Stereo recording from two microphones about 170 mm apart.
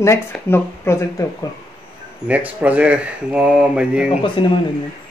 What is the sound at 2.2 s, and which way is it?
Speech, 10° right (ahead or behind).